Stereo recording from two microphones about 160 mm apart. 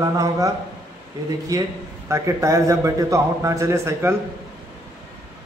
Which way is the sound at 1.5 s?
20° right (ahead or behind).